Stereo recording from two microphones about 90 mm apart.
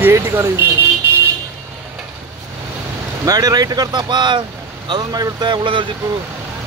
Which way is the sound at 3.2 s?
45° right (ahead or behind).